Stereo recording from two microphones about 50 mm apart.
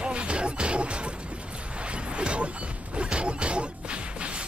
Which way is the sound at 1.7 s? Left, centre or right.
Right.